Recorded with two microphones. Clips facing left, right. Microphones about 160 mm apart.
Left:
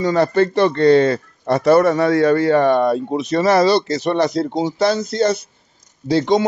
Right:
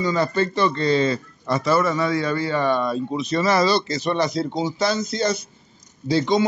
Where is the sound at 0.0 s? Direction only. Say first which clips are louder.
Left 6 dB; 70° left (ahead or behind).